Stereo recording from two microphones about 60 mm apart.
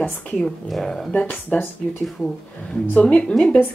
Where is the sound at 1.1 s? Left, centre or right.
Left.